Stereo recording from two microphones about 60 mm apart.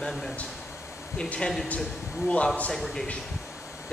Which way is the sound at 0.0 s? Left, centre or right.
Centre.